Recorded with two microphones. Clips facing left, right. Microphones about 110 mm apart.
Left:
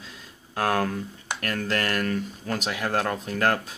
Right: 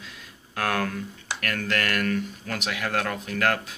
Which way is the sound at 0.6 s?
30° left (ahead or behind).